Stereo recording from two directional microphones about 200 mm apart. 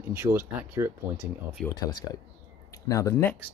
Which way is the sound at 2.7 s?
15° left (ahead or behind).